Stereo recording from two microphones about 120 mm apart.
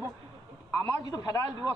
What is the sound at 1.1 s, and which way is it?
Speech, 30° left (ahead or behind).